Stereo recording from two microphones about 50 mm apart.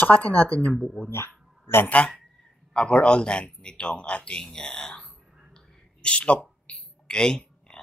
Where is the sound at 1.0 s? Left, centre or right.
Left.